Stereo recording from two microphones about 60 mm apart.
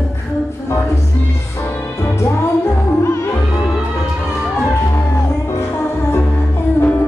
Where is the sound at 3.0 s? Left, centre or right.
Left.